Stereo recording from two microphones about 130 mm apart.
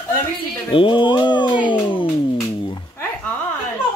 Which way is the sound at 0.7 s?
40° left (ahead or behind).